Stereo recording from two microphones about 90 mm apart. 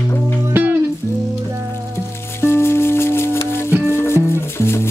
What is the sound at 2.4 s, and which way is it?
Music, 25° left (ahead or behind).